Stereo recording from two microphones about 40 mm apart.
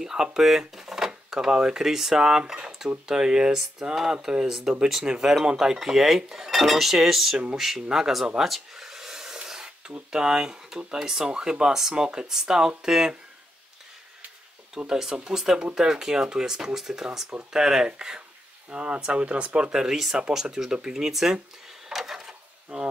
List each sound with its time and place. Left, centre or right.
0.0 s speech: centre
6.3 s cutlery: centre
7.5 s speech: centre
8.4 s a sound: centre
11.1 s speech: centre
14.9 s speech: centre; by 19.7 s right
19.7 s speech: centre
21.9 s drawer open or close: centre